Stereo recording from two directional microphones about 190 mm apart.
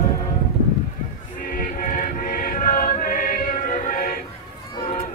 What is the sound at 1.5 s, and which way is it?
Music, 45° left (ahead or behind).